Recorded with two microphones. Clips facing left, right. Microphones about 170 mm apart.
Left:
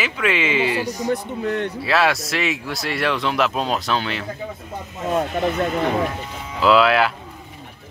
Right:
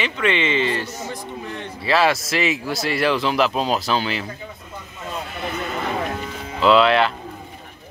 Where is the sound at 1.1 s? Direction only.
65° left (ahead or behind).